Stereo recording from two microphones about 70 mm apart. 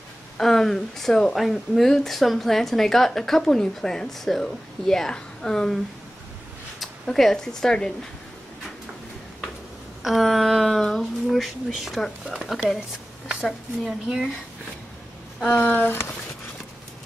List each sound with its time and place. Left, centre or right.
0.4 s speech: centre
6.8 s speech: centre
10.0 s speech: centre
15.5 s speech: left